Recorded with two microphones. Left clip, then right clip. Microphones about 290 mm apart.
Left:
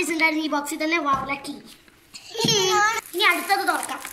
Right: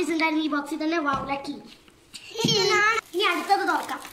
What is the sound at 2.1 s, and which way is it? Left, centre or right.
Babbling, centre.